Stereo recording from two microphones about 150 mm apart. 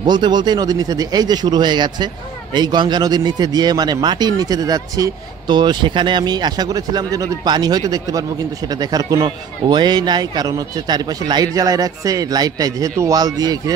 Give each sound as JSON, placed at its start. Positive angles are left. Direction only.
{"t": 0.0, "sound": "speech", "side_deg": -30}